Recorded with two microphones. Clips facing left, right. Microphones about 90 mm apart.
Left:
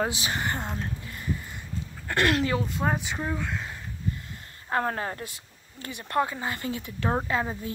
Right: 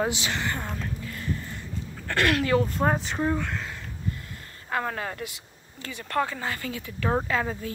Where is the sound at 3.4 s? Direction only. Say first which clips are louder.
Right 1 dB; 10° left (ahead or behind).